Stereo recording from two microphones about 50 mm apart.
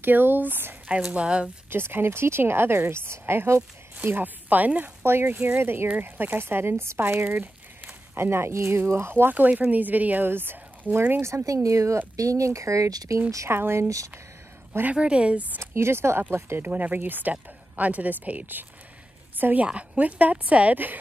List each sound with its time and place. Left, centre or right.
0.0 s speech: right
1.1 s a woman's voice: right
1.7 s speech: right
4.0 s speech: right
5.0 s speech: right
9.3 s speech: right
10.2 s speech: right
11.1 s speech: right
13.5 s speech: right
13.8 s speech: right
14.9 s a woman's voice: right
15.6 s speech: right
19.3 s a sound: right
19.6 s a woman's voice: right